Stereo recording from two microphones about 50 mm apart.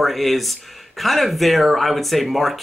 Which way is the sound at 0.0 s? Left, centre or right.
Centre.